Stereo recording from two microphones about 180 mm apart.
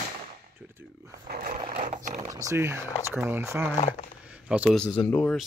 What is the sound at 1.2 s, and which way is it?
Dog, 50° right (ahead or behind).